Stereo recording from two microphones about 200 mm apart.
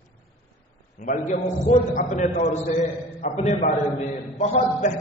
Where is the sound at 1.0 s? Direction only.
40° left (ahead or behind).